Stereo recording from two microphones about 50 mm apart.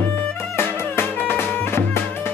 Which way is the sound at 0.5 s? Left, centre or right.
Left.